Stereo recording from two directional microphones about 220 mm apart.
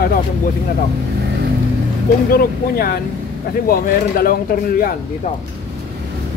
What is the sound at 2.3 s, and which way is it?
Speech, 45° left (ahead or behind).